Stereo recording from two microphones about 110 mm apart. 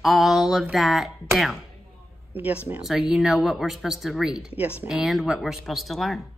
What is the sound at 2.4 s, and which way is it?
Speech, 15° right (ahead or behind).